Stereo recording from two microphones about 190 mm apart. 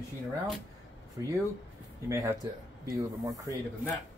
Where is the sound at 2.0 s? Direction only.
15° right (ahead or behind).